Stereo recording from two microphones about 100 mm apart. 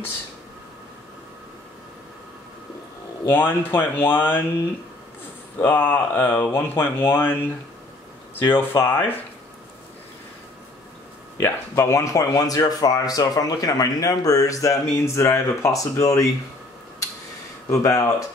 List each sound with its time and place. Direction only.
3.3 s speech: 20° left (ahead or behind)
5.6 s speech: 20° left (ahead or behind)
11.3 s speech: 25° left (ahead or behind)
17.6 s speech: 30° left (ahead or behind)